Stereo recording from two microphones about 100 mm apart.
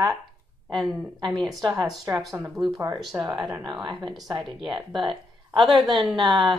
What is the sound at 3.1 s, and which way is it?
Speech, 20° right (ahead or behind).